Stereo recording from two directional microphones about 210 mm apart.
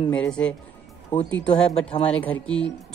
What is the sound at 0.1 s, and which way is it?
Speech, 5° left (ahead or behind).